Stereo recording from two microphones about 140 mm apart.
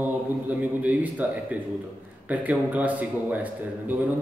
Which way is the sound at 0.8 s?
10° right (ahead or behind).